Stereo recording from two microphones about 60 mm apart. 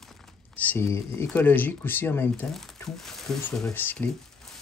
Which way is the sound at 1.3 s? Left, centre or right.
Left.